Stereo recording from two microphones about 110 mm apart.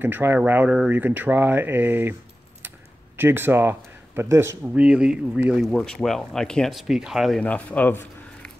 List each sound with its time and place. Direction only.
0.0 s speech: 20° right (ahead or behind)
3.2 s speech: 20° right (ahead or behind)
4.7 s speech: 10° right (ahead or behind)
5.7 s speech: 5° left (ahead or behind)
7.4 s speech: 15° left (ahead or behind)